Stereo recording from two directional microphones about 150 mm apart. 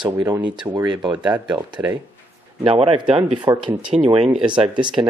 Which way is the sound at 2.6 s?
40° right (ahead or behind).